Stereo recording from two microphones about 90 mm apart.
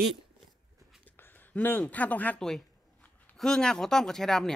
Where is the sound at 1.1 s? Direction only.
25° left (ahead or behind).